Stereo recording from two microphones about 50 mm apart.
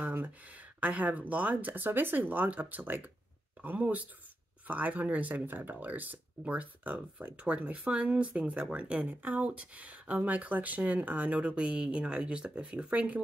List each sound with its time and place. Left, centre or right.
0.0 s a sound: right
0.7 s speech: right
4.6 s speech: right